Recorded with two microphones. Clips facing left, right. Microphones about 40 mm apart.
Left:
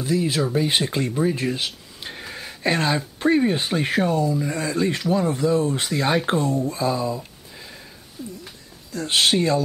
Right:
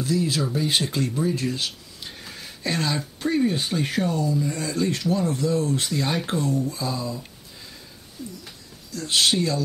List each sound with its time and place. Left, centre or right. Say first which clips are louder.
0.0 s speech: left 2 dB; left
8.2 s a sound: left 2 dB; centre
8.9 s speech: left 2 dB; left